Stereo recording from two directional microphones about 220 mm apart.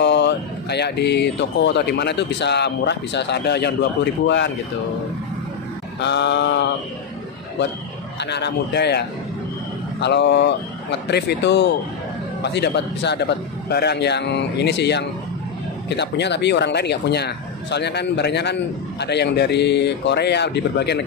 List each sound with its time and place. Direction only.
0.0 s speech: 50° left (ahead or behind)
5.9 s speech: 50° left (ahead or behind)
8.2 s speech: 50° left (ahead or behind)